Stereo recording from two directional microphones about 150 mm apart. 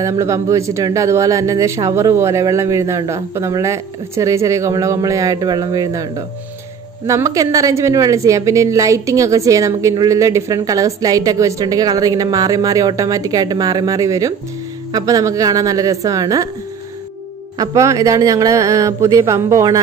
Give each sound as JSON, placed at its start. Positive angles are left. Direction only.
{"t": 0.2, "sound": "a woman's voice", "side_deg": -20}
{"t": 17.6, "sound": "a woman's voice", "side_deg": -20}